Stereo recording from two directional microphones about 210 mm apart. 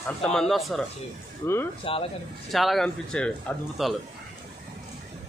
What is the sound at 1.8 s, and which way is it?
Speech, 25° left (ahead or behind).